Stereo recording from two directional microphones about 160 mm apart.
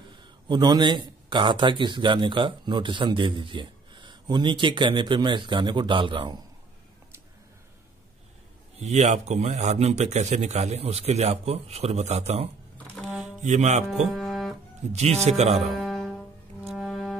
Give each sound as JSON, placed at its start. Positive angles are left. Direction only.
{"t": 0.1, "sound": "a man's voice", "side_deg": -30}
{"t": 8.7, "sound": "speech", "side_deg": -45}
{"t": 13.0, "sound": "music", "side_deg": 0}
{"t": 13.4, "sound": "speech", "side_deg": -50}
{"t": 13.8, "sound": "music", "side_deg": 0}
{"t": 14.9, "sound": "speech", "side_deg": -45}
{"t": 15.7, "sound": "music", "side_deg": 0}